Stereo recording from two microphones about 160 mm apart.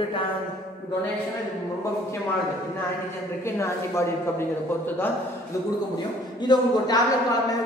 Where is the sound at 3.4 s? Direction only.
15° left (ahead or behind).